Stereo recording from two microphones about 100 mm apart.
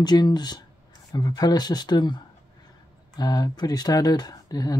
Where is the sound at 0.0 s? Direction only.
45° left (ahead or behind).